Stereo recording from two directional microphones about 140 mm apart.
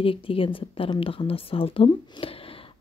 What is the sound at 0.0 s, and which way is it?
Speech, 40° left (ahead or behind).